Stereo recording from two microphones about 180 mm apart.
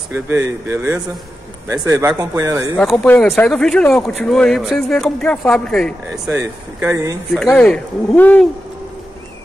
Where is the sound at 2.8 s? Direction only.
5° left (ahead or behind).